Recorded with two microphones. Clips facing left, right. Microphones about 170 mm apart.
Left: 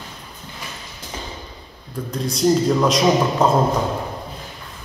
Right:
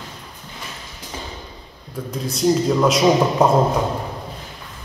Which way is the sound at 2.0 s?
5° right (ahead or behind).